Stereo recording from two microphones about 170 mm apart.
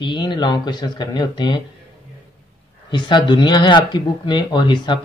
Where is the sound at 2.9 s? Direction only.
30° left (ahead or behind).